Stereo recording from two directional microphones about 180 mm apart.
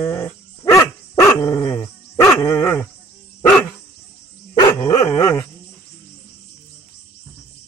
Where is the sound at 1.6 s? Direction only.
30° left (ahead or behind).